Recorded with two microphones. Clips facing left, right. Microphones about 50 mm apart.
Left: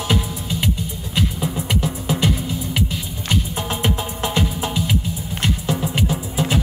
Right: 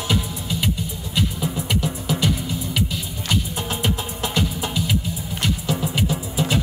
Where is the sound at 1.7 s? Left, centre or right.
Left.